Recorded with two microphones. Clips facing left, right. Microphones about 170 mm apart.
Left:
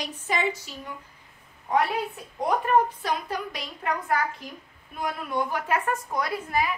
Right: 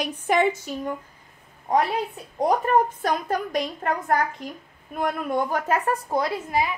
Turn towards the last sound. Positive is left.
turn(degrees=-25)  # may be behind; listen again after turning